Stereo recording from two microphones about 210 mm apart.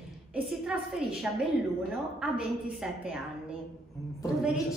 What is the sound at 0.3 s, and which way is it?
A woman's voice, centre (ahead or behind).